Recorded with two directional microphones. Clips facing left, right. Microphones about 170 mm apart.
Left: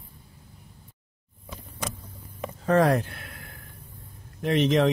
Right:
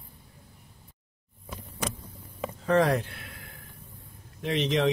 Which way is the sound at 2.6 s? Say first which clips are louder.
Left 2 dB; 45° left (ahead or behind).